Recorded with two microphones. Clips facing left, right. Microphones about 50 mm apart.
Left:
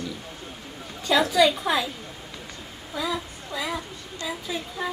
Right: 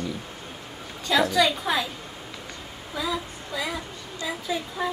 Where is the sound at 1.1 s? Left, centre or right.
Centre.